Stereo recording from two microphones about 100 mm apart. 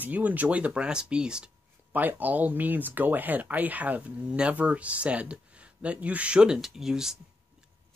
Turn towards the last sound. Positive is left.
turn(degrees=-5)  # may be behind; listen again after turning